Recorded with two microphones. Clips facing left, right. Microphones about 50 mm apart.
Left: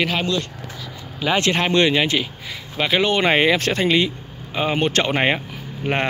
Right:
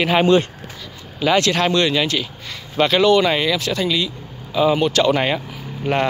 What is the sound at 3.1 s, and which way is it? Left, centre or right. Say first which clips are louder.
Speech: right 1 dB; left.